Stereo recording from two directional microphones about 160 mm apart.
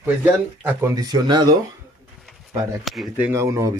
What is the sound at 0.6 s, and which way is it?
Speech, 20° right (ahead or behind).